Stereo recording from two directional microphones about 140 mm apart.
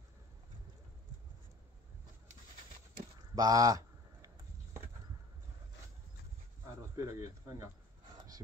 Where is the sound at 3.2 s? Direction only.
25° right (ahead or behind).